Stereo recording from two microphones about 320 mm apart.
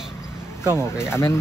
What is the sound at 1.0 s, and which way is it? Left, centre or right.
Speech, centre.